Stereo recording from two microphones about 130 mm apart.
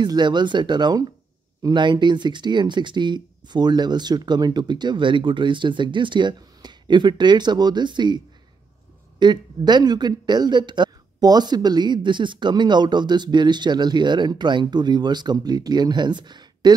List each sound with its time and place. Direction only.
0.0 s speech: 35° right (ahead or behind)
9.2 s speech: 35° right (ahead or behind)